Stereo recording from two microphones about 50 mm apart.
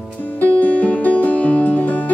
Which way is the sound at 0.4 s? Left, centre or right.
Left.